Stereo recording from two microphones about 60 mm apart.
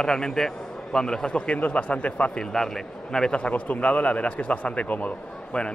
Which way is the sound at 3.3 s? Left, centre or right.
Left.